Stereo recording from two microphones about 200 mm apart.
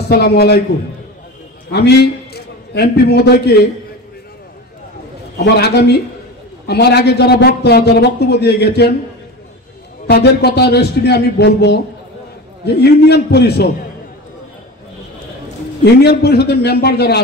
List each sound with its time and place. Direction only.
0.1 s a man's voice: 50° left (ahead or behind)
1.7 s a man's voice: 55° left (ahead or behind)
5.4 s a man's voice: 55° left (ahead or behind)
10.0 s a man's voice: 55° left (ahead or behind)
13.0 s a man's voice: 55° left (ahead or behind)
15.8 s a man's voice: 55° left (ahead or behind)